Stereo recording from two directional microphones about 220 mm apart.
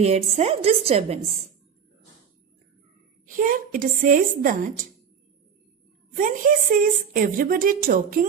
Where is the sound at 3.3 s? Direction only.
35° right (ahead or behind).